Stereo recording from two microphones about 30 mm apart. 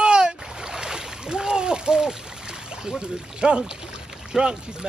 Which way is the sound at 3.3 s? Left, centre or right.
Right.